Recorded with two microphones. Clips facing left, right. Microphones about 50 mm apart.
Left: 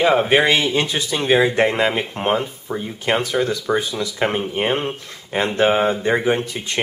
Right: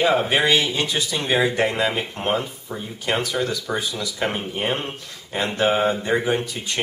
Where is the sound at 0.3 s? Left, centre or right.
Left.